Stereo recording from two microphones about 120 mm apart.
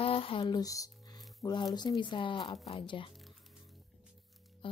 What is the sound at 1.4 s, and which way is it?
Speech, 40° left (ahead or behind).